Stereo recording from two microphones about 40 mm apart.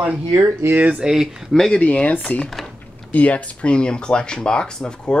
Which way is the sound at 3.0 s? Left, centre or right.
Left.